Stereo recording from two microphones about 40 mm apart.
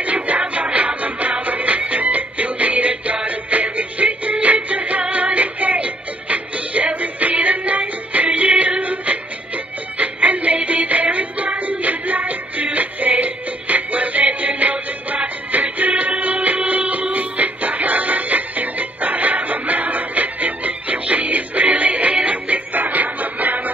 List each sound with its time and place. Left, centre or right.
0.0 s music: right